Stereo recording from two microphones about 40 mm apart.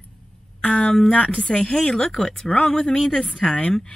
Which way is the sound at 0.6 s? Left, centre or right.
Left.